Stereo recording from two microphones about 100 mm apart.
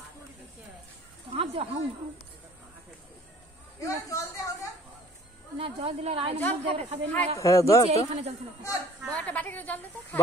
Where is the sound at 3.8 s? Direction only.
35° left (ahead or behind).